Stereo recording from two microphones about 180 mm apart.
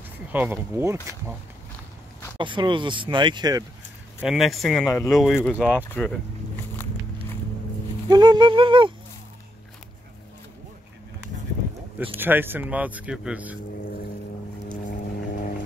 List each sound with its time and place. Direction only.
0.3 s speech: 10° right (ahead or behind)
2.3 s speech: 25° right (ahead or behind)
4.2 s speech: centre (ahead or behind)
4.8 s speech: 15° left (ahead or behind)
5.1 s speech: centre (ahead or behind)
8.1 s speech: 25° right (ahead or behind)
12.2 s speech: 10° right (ahead or behind)
14.9 s vehicle: 50° left (ahead or behind)